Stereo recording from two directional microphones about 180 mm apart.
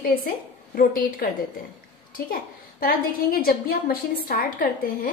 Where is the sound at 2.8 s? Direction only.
55° left (ahead or behind).